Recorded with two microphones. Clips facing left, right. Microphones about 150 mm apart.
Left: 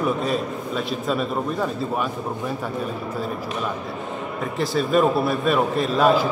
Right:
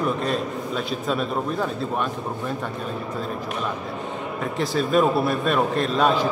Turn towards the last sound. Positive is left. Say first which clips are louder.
# left 2 dB
turn(degrees=5)  # may be behind; listen again after turning